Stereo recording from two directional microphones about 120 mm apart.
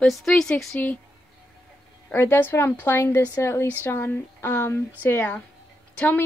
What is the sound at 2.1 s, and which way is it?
A woman's voice, 15° left (ahead or behind).